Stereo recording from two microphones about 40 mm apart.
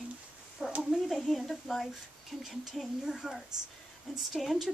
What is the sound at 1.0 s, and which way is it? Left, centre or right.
Speech, centre.